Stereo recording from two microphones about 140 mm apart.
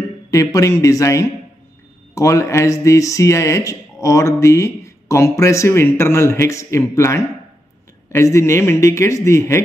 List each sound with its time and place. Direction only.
0.3 s speech: 25° left (ahead or behind)